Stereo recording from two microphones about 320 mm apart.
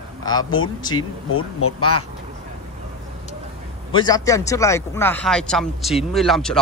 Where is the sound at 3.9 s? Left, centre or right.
Centre.